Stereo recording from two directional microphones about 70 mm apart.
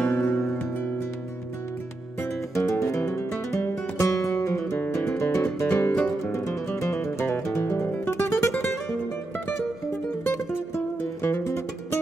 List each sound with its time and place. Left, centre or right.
0.0 s music: left
2.5 s music: left
4.7 s music: left
6.3 s guitar: left
10.2 s music: left